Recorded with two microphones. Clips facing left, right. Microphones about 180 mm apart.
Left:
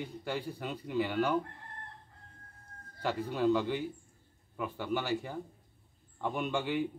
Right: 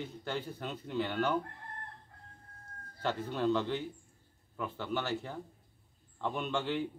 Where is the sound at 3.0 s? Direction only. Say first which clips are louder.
Left 2 dB; 10° left (ahead or behind).